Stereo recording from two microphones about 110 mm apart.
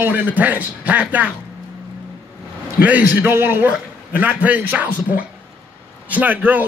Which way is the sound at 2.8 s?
15° right (ahead or behind).